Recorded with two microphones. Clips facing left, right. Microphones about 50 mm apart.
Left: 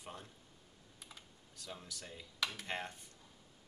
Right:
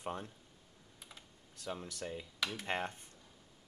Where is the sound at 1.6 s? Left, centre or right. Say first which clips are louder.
Right 8 dB; right.